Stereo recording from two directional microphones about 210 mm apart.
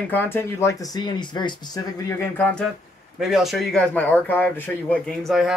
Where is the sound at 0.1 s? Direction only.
10° left (ahead or behind).